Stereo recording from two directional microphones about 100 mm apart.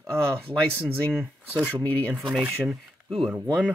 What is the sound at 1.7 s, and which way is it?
Speech, 15° left (ahead or behind).